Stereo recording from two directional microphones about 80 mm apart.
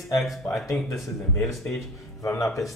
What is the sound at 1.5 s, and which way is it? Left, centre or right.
Speech, centre.